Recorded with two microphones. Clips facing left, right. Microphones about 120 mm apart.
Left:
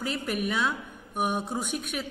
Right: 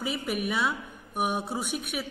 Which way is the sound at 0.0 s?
5° right (ahead or behind).